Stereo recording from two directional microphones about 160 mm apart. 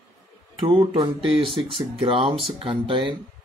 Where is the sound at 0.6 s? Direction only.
30° right (ahead or behind).